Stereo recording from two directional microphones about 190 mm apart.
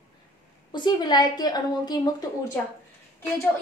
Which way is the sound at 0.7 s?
20° left (ahead or behind).